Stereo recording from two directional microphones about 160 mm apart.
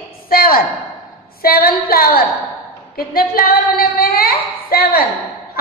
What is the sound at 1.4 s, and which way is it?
Speech, 70° left (ahead or behind).